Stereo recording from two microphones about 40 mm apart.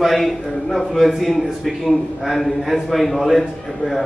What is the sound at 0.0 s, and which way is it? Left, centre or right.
A man's voice, centre.